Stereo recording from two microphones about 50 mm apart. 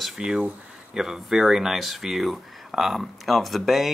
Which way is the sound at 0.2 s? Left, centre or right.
Centre.